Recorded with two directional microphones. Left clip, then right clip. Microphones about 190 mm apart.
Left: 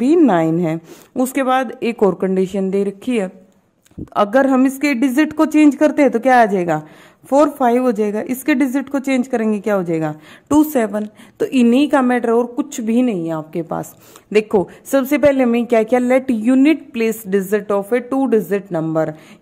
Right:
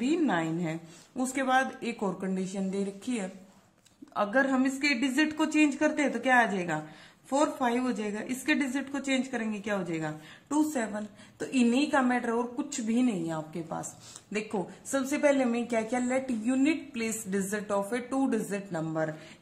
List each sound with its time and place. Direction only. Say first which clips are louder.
0.0 s a woman's voice: left 15 dB; 55° left (ahead or behind)